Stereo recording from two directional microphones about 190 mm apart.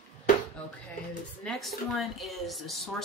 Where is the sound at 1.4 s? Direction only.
Centre (ahead or behind).